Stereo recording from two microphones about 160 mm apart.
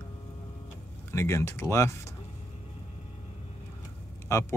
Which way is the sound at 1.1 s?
15° left (ahead or behind).